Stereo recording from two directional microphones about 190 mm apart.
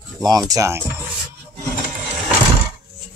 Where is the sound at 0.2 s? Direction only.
20° right (ahead or behind).